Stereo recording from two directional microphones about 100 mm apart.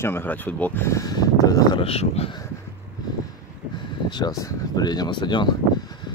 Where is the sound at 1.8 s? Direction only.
85° left.